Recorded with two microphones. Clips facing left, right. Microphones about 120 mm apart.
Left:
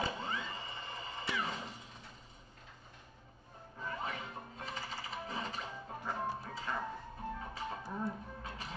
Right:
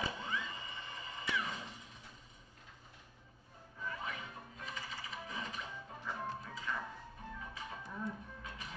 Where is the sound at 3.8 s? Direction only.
35° left (ahead or behind).